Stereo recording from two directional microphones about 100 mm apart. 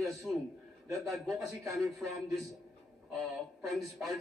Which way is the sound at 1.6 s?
30° right (ahead or behind).